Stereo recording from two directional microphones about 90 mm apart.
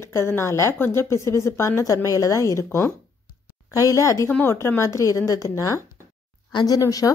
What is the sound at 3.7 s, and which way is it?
A woman's voice, 40° left (ahead or behind).